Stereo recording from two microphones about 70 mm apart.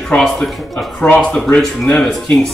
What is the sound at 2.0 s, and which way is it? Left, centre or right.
Speech, centre.